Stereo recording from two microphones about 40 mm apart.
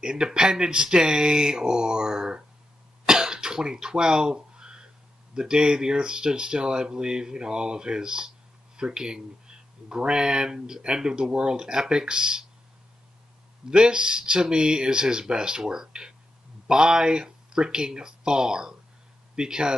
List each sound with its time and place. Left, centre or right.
0.0 s speech: centre
3.1 s throat clearing: centre
5.3 s speech: centre
13.7 s speech: right